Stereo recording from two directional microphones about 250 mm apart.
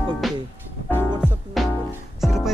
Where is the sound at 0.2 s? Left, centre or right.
Centre.